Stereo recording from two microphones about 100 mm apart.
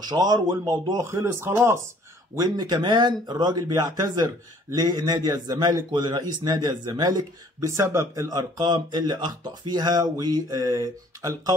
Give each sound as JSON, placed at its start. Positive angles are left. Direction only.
{"t": 0.0, "sound": "speech", "side_deg": -45}
{"t": 2.3, "sound": "speech", "side_deg": -40}
{"t": 7.7, "sound": "speech", "side_deg": -30}
{"t": 8.3, "sound": "speech", "side_deg": -45}